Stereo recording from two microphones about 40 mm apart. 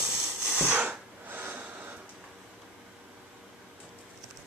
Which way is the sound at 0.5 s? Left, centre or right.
Right.